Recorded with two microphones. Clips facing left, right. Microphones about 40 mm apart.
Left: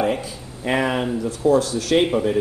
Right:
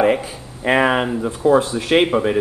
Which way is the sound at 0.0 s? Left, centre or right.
Right.